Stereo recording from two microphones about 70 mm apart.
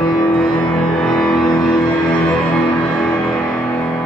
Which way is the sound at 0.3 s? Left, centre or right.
Centre.